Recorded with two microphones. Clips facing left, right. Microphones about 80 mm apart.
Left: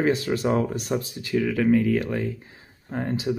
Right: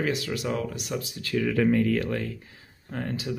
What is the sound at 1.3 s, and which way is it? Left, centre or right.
Speech, centre.